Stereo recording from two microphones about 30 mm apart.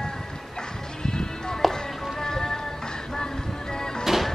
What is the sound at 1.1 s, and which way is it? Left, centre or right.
Music, left.